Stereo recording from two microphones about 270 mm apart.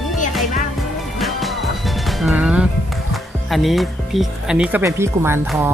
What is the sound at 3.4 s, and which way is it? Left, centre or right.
Speech, centre.